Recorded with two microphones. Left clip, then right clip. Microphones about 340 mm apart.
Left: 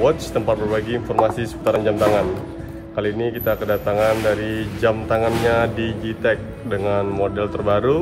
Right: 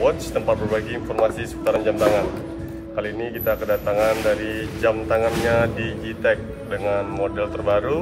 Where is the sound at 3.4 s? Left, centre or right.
Left.